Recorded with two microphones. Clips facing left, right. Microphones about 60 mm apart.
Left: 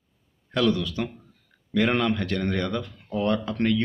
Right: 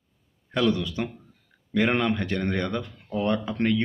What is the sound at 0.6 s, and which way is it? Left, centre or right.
Speech, centre.